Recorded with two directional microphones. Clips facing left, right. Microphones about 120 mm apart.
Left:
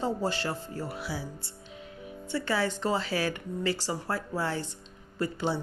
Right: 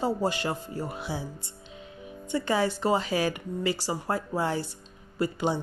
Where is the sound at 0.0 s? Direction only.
10° right (ahead or behind).